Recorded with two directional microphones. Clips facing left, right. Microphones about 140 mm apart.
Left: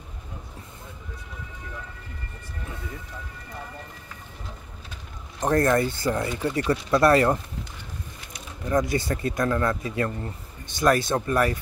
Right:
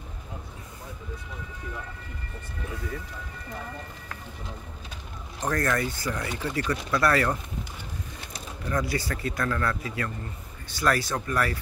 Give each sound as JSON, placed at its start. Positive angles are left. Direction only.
{"t": 5.4, "sound": "speech", "side_deg": 25}
{"t": 8.6, "sound": "speech", "side_deg": 20}